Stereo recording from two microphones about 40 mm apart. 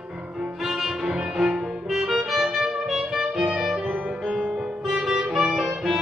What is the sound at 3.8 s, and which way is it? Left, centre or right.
Music, right.